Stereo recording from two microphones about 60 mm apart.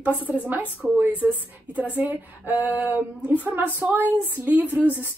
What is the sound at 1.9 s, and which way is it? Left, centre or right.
Speech, right.